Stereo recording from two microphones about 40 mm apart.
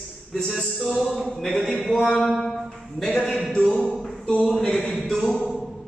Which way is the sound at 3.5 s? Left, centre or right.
Centre.